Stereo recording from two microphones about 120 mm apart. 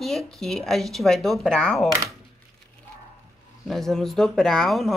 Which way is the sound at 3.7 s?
5° left (ahead or behind).